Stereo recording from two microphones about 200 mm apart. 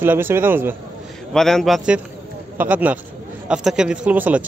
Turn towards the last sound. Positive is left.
turn(degrees=-5)  # may be behind; listen again after turning